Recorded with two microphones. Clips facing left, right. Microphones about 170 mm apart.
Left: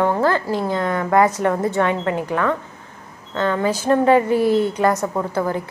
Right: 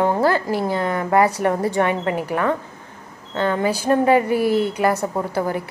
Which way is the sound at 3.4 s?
15° right (ahead or behind).